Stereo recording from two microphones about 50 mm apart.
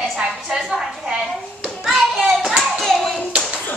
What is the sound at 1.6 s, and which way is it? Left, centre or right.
Hands, centre.